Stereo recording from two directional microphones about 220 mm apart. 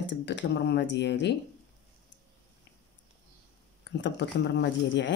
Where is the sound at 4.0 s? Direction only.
55° left (ahead or behind).